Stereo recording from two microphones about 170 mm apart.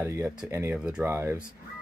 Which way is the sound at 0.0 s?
15° right (ahead or behind).